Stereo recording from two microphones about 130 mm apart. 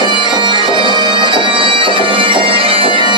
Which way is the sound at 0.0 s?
35° right (ahead or behind).